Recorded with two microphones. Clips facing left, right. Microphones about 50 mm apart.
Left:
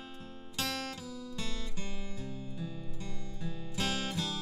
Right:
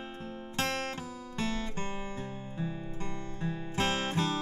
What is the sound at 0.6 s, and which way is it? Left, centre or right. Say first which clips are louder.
Music: right 4 dB; right.